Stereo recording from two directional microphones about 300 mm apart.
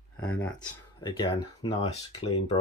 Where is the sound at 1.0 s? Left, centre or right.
Centre.